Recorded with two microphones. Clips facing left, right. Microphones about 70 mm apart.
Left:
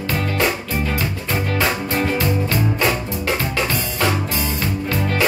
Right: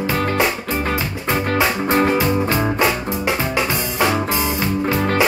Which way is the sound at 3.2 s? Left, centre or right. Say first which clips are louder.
Right 2 dB; centre.